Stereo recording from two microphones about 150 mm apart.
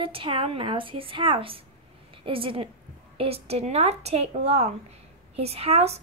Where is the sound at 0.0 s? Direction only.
35° right (ahead or behind).